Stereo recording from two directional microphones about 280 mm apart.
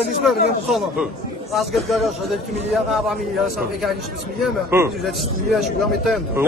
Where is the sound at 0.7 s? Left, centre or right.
Centre.